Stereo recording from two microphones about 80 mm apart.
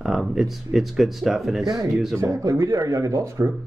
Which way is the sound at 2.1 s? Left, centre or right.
Right.